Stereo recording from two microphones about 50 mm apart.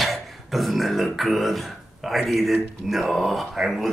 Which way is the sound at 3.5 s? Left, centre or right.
Centre.